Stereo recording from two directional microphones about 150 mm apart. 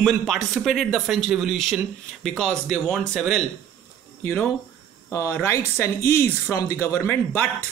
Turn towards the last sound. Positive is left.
turn(degrees=15)  # may be behind; listen again after turning